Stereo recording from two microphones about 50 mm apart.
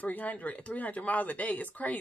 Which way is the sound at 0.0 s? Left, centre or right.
Left.